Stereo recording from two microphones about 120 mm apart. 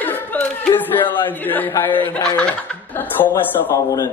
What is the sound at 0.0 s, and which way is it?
Chuckle, 15° left (ahead or behind).